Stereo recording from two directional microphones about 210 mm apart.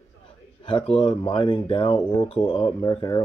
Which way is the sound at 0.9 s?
25° left (ahead or behind).